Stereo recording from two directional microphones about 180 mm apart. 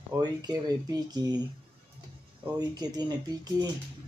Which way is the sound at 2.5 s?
20° right (ahead or behind).